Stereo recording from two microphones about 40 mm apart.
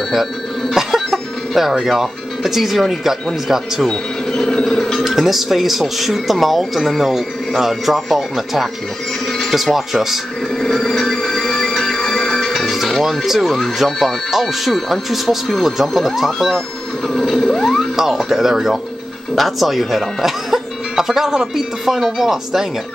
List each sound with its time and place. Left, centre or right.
0.7 s cough: centre
1.5 s speech: centre
4.3 s a sound: centre
5.0 s speech: centre
10.6 s music: centre
12.6 s speech: centre
17.1 s a sound: centre
17.9 s speech: centre